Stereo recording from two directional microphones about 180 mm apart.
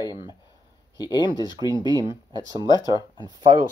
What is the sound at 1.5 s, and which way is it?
Speech, 20° right (ahead or behind).